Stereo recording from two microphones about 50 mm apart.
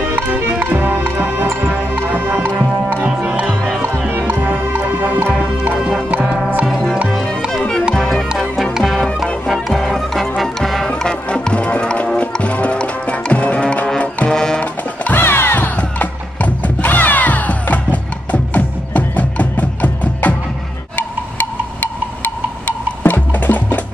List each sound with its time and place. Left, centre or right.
0.1 s music: right
4.1 s music: right
7.9 s music: centre
9.2 s music: centre
15.1 s music: left
15.6 s music: left
22.2 s music: left